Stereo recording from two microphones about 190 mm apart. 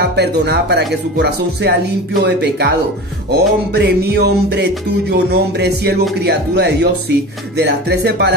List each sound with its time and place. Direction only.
0.0 s speech: 60° right (ahead or behind)